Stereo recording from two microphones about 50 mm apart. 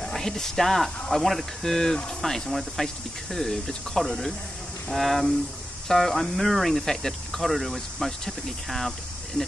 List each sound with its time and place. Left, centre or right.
0.0 s speech: centre